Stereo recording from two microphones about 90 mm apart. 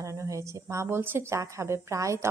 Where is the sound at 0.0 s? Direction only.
35° right (ahead or behind).